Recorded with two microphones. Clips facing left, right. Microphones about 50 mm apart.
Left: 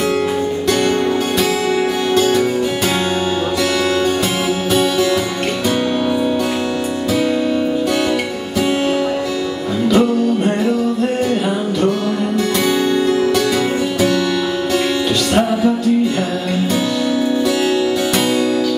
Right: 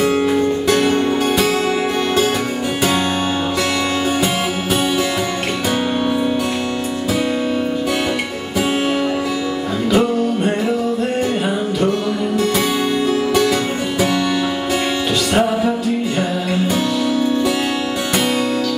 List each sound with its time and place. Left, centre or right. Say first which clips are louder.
9.8 s music: left 2 dB; centre